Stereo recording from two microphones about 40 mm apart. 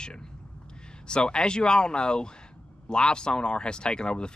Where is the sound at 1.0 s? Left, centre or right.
Left.